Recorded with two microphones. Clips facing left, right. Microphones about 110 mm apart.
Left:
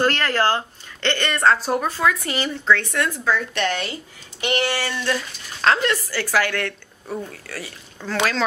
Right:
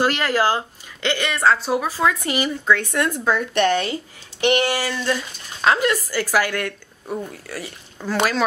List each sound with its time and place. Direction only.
0.0 s speech: 10° right (ahead or behind)
2.0 s speech: 15° right (ahead or behind)